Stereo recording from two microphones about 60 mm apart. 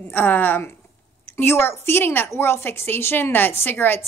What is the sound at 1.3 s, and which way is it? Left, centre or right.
A woman's voice, left.